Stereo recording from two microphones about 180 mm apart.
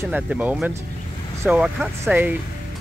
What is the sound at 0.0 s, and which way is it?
Speech, 10° right (ahead or behind).